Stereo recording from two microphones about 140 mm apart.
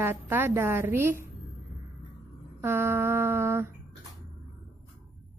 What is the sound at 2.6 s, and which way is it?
A woman's voice, 15° right (ahead or behind).